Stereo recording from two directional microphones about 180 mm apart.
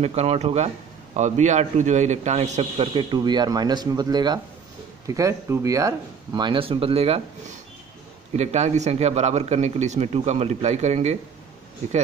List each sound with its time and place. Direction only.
0.0 s a man's voice: 35° right (ahead or behind)
8.3 s a man's voice: 40° right (ahead or behind)